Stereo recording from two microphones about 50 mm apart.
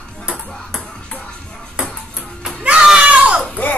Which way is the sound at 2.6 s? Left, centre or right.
Centre.